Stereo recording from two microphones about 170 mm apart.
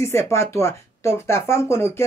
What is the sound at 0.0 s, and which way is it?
Speech, 15° left (ahead or behind).